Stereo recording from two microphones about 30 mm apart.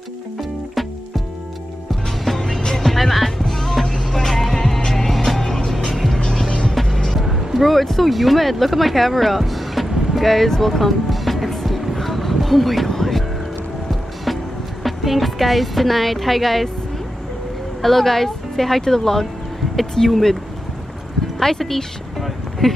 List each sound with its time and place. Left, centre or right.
0.4 s music: centre
2.3 s music: centre
2.8 s music: centre
5.1 s music: centre
5.4 s music: centre
7.2 s music: centre
7.6 s speech: centre
9.4 s music: centre
17.8 s speech: centre
21.4 s speech: centre
22.2 s vehicle: centre